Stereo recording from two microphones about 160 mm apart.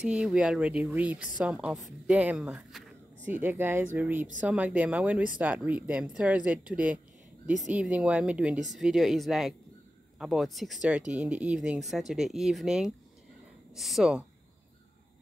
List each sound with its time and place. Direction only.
0.0 s speech: 5° right (ahead or behind)